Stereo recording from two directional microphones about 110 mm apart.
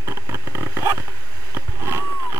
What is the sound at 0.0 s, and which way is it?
Vehicle, 25° right (ahead or behind).